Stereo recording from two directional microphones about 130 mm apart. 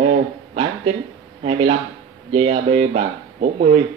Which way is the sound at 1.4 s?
50° right (ahead or behind).